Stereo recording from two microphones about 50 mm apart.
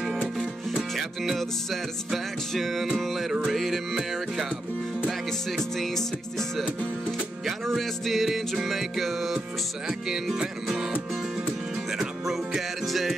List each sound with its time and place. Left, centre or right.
0.2 s music: centre
5.6 s music: centre
7.6 s music: centre
9.8 s speech: centre
12.0 s music: centre